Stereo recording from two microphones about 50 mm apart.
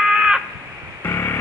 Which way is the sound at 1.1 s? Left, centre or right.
Left.